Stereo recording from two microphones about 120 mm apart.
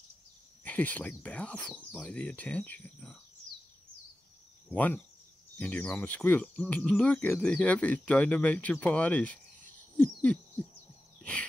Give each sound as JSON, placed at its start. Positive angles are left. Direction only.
{"t": 0.7, "sound": "speech", "side_deg": 15}
{"t": 4.6, "sound": "speech", "side_deg": 15}
{"t": 9.9, "sound": "owl", "side_deg": 10}